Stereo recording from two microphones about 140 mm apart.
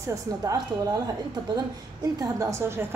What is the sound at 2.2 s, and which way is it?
Speech, 25° right (ahead or behind).